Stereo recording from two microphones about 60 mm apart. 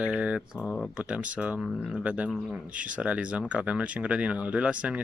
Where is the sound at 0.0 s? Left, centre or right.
Centre.